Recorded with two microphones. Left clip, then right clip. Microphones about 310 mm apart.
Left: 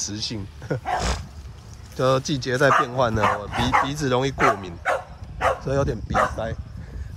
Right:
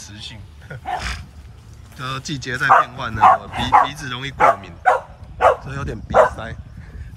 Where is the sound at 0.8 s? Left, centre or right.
Centre.